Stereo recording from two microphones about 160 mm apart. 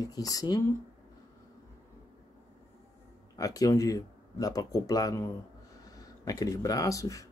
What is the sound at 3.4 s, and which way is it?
Speech, 20° left (ahead or behind).